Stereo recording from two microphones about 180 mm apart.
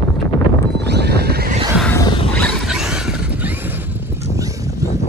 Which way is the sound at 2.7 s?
5° right (ahead or behind).